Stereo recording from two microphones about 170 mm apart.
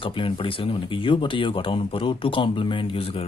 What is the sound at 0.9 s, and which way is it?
Speech, 30° left (ahead or behind).